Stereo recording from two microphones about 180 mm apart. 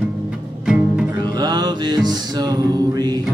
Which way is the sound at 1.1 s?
25° right (ahead or behind).